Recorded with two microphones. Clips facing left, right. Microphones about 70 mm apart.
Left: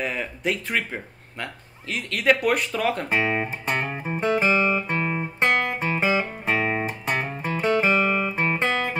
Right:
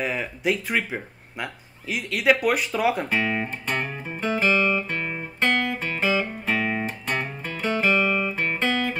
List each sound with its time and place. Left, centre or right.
0.0 s speech: centre
3.2 s speech: left
3.4 s music: centre
4.5 s guitar: centre
4.8 s guitar: left
5.9 s music: centre